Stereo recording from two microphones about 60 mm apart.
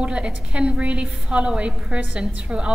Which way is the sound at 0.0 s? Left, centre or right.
Centre.